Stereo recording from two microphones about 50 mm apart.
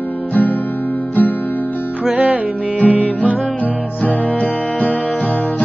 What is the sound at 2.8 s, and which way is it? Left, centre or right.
Music, left.